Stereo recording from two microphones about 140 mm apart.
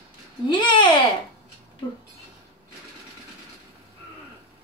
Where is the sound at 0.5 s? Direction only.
35° left (ahead or behind).